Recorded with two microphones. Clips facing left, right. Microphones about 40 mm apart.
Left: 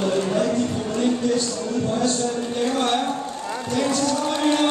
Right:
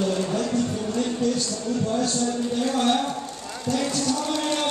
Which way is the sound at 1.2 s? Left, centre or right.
Centre.